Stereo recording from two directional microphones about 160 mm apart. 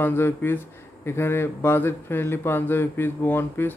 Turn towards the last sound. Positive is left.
turn(degrees=15)  # may be behind; listen again after turning